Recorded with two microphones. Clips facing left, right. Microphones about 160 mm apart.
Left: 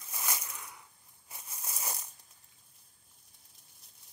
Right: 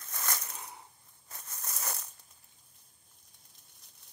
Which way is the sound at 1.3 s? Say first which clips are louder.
Right 1 dB; 10° left (ahead or behind).